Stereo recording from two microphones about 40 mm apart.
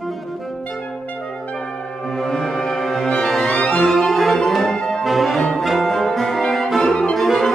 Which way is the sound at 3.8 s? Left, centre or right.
Centre.